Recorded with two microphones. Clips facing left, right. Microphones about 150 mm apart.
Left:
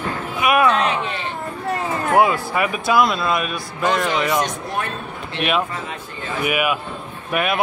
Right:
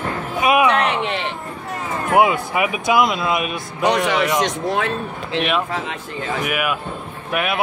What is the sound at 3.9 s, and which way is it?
Speech, 75° right (ahead or behind).